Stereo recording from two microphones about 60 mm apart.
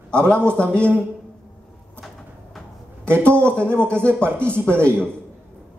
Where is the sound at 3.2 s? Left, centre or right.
Centre.